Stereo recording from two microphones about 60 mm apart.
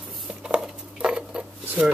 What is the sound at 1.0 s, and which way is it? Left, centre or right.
Dishes, centre.